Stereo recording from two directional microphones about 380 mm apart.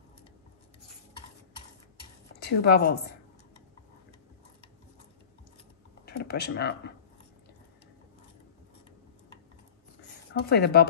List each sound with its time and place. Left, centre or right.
2.4 s a woman's voice: left
6.0 s a sound: left
10.4 s a woman's voice: left